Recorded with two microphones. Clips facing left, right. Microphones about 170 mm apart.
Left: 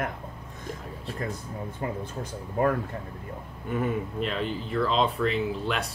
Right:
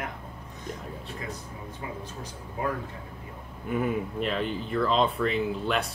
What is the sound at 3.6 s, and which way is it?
Speech, centre (ahead or behind).